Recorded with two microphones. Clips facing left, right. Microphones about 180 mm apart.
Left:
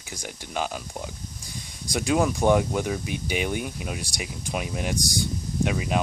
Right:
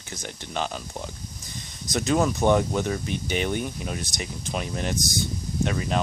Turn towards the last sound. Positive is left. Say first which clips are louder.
# even
turn(degrees=10)  # may be behind; listen again after turning